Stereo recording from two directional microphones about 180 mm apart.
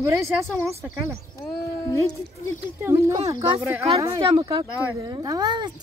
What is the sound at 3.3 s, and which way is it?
Speech, 30° right (ahead or behind).